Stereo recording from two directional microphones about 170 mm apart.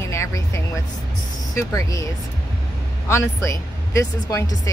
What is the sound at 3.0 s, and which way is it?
Speech, 15° left (ahead or behind).